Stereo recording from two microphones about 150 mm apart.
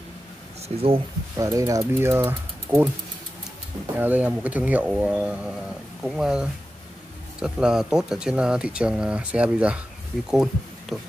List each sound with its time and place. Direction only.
0.8 s speech: 35° right (ahead or behind)
1.4 s speech: 20° right (ahead or behind)
3.9 s speech: 10° right (ahead or behind)